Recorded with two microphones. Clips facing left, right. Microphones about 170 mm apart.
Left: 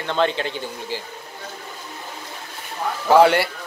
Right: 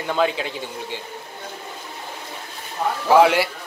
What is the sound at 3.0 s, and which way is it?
Speech, centre (ahead or behind).